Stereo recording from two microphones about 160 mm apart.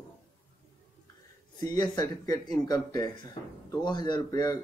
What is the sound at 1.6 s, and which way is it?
Speech, 25° left (ahead or behind).